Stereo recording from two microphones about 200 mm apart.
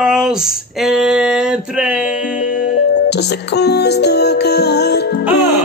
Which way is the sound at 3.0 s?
55° left (ahead or behind).